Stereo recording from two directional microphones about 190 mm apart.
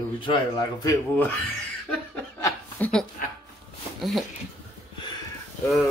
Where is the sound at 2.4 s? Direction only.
5° left (ahead or behind).